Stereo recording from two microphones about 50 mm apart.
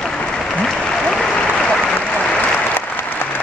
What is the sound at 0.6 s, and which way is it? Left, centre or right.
Applause, centre.